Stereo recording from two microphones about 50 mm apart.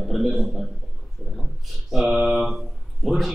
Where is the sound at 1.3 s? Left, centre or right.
Centre.